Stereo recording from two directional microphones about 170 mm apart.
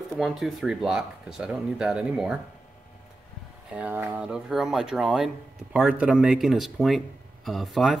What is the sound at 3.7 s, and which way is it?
Speech, 10° right (ahead or behind).